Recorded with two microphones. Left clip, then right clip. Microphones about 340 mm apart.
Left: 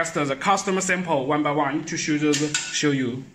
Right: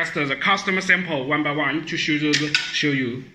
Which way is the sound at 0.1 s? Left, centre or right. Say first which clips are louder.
Right 1 dB; left.